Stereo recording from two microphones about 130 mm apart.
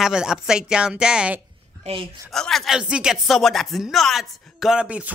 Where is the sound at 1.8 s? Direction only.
45° right (ahead or behind).